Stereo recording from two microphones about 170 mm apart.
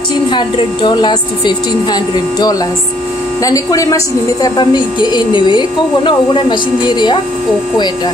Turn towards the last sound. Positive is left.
turn(degrees=25)  # may be behind; listen again after turning